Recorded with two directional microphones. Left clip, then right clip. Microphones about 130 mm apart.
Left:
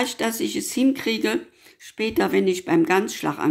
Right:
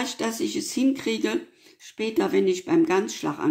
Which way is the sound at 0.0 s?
35° left (ahead or behind).